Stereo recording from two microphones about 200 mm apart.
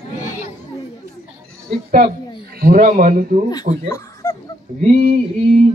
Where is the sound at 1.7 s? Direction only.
30° right (ahead or behind).